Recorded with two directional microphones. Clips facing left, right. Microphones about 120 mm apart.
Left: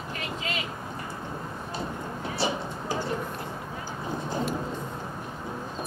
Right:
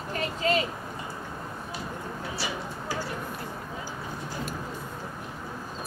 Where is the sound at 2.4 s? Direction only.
25° left (ahead or behind).